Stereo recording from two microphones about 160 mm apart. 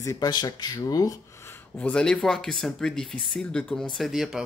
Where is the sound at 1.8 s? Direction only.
5° left (ahead or behind).